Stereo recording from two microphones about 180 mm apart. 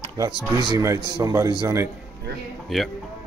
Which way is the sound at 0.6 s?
20° right (ahead or behind).